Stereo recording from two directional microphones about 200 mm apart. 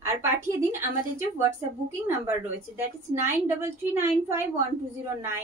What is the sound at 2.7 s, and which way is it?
A woman's voice, 10° right (ahead or behind).